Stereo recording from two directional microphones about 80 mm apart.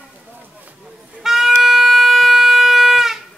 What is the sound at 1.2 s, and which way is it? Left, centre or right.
Wind instrument, centre.